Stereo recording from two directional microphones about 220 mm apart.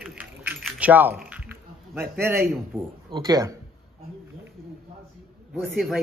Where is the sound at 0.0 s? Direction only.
5° right (ahead or behind).